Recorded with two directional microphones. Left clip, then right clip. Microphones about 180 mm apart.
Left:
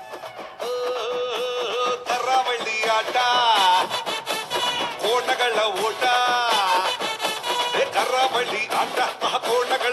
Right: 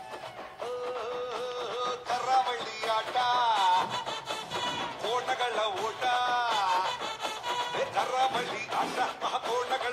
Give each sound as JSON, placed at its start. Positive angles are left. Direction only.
{"t": 1.6, "sound": "music", "side_deg": 35}